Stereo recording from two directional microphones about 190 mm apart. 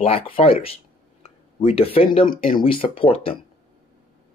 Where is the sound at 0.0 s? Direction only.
30° left (ahead or behind).